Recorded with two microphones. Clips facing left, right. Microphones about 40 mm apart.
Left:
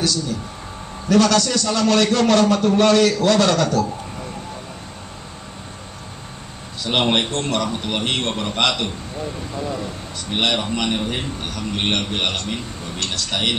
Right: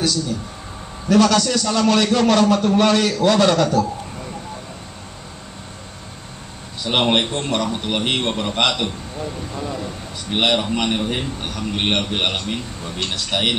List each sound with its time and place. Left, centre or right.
0.0 s a man's voice: centre
6.8 s a man's voice: centre